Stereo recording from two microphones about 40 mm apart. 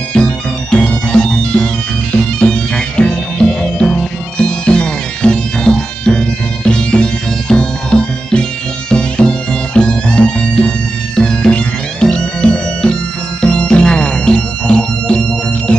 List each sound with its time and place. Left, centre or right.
0.1 s music: centre